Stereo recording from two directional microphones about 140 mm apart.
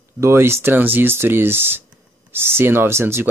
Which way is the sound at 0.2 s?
20° right (ahead or behind).